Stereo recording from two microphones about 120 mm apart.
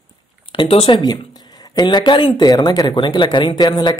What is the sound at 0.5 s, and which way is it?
Speech, 50° left (ahead or behind).